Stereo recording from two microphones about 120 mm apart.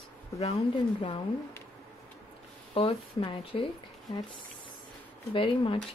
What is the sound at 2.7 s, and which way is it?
Speech, 50° left (ahead or behind).